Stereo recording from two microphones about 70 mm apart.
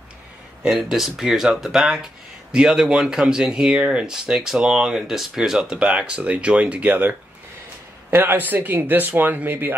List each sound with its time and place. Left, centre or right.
0.7 s speech: centre; by 9.8 s right